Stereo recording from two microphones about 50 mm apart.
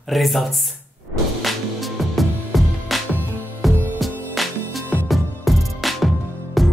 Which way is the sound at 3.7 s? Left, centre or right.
Right.